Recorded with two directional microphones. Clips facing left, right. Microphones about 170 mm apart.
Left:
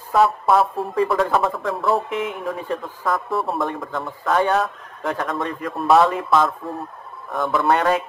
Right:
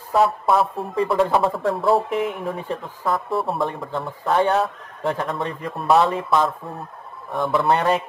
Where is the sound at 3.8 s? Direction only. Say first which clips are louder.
Even; 30° right (ahead or behind).